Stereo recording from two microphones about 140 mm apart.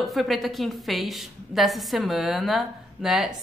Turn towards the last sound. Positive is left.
turn(degrees=-5)  # may be behind; listen again after turning